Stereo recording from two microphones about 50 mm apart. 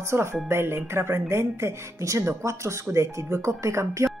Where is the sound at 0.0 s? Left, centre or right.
Right.